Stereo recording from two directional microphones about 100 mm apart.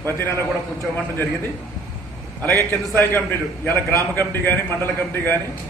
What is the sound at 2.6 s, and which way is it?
A man's voice, 25° left (ahead or behind).